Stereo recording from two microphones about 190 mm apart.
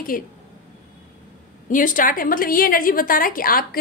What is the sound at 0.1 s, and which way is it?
Speech, 45° left (ahead or behind).